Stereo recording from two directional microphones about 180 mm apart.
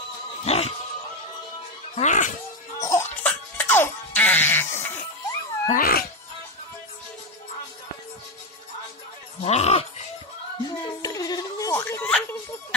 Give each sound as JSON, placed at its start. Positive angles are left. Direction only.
{"t": 0.5, "sound": "a sound", "side_deg": 35}
{"t": 2.0, "sound": "speech", "side_deg": 45}
{"t": 2.8, "sound": "cough", "side_deg": 15}
{"t": 3.3, "sound": "music", "side_deg": 10}
{"t": 5.7, "sound": "cat", "side_deg": 55}
{"t": 9.4, "sound": "music", "side_deg": 35}
{"t": 10.6, "sound": "music", "side_deg": 20}